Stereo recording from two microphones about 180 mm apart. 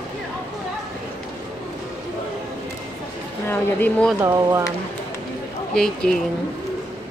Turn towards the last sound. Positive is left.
turn(degrees=5)  # may be behind; listen again after turning